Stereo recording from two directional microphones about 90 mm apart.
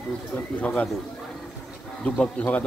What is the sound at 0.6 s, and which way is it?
Speech, 15° left (ahead or behind).